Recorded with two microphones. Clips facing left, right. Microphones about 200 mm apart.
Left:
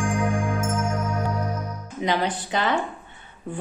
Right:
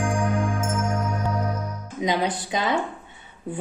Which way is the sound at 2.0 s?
15° right (ahead or behind).